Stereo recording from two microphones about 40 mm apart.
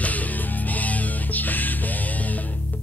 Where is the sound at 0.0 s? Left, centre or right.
Left.